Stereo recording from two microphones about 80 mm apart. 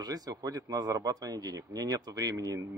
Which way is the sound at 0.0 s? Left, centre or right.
Right.